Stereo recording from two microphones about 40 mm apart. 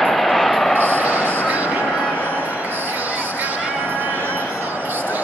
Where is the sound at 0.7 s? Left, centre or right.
Left.